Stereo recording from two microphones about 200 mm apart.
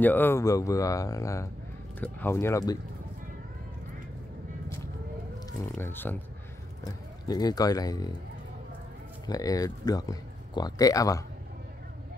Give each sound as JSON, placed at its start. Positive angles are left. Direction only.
{"t": 0.0, "sound": "speech", "side_deg": 10}
{"t": 5.6, "sound": "speech", "side_deg": 10}
{"t": 9.2, "sound": "speech", "side_deg": 20}